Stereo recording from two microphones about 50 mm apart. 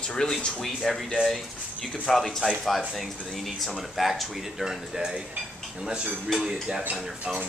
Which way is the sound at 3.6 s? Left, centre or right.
Centre.